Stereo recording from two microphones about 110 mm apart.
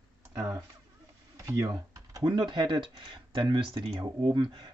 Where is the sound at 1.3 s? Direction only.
30° right (ahead or behind); by 3.6 s 50° right (ahead or behind).